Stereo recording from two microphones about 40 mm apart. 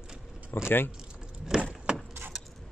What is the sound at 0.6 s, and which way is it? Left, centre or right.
Speech, left.